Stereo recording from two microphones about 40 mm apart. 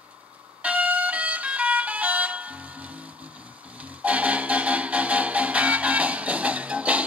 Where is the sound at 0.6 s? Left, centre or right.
Right.